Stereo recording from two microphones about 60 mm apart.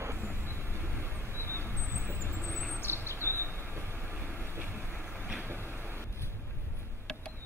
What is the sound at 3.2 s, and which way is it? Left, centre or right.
Train, left.